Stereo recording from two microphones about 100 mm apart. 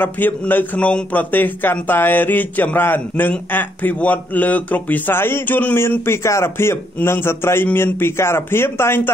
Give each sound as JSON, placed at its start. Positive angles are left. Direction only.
{"t": 0.0, "sound": "a man's voice", "side_deg": 20}